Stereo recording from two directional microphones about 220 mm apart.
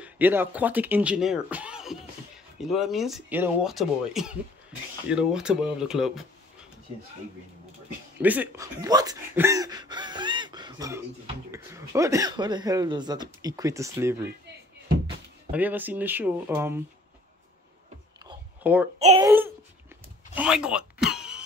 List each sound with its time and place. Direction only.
0.0 s speech: 10° right (ahead or behind)
8.2 s speech: 5° right (ahead or behind)
15.5 s speech: 10° right (ahead or behind)
18.2 s a sound: 10° right (ahead or behind)
19.1 s speech: 10° right (ahead or behind)